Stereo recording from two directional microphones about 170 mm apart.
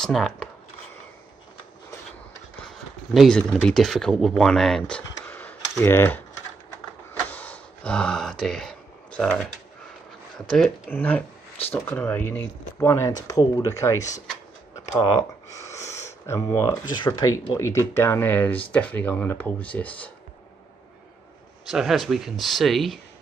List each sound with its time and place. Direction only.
0.0 s speech: 5° left (ahead or behind)
3.1 s speech: 5° left (ahead or behind)
7.3 s a sound: 10° left (ahead or behind)
10.4 s speech: 5° left (ahead or behind)
21.6 s speech: centre (ahead or behind)